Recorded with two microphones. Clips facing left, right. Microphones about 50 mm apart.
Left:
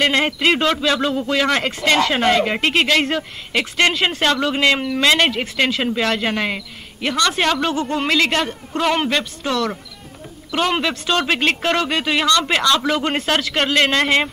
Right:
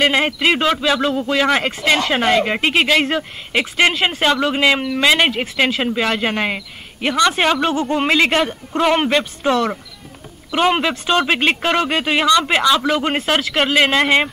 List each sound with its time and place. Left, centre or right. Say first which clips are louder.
0.0 s a man's voice: right 1 dB; centre